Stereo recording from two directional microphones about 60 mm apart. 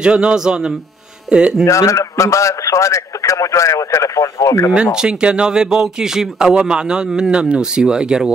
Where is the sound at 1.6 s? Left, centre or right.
Left.